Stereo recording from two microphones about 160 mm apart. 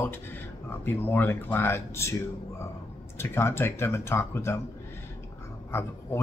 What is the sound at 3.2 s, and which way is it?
Speech, 15° left (ahead or behind).